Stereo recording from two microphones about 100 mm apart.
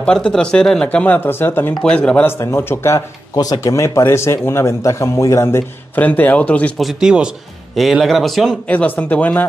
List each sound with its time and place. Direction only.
0.0 s speech: 5° left (ahead or behind)
1.8 s speech: 10° left (ahead or behind)
2.2 s a man's voice: 25° left (ahead or behind)
3.3 s a man's voice: 40° left (ahead or behind); by 6.7 s 15° left (ahead or behind)
6.8 s speech: 5° right (ahead or behind)
8.6 s speech: 15° left (ahead or behind)